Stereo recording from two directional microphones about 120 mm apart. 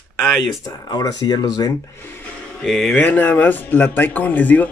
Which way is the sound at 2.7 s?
5° left (ahead or behind).